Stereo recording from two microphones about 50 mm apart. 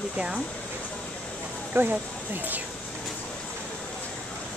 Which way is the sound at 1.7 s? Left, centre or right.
Right.